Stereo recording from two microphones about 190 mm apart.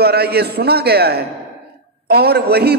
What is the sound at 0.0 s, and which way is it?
A man's voice, 55° right (ahead or behind).